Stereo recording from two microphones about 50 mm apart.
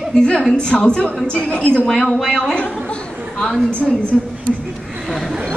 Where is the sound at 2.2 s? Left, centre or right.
Centre.